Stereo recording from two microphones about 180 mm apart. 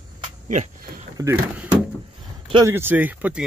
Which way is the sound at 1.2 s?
20° right (ahead or behind).